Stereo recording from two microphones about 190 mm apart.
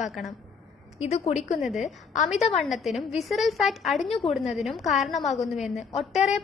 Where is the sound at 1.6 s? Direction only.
Centre (ahead or behind).